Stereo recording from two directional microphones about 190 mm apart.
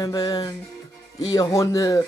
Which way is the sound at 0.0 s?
20° left (ahead or behind).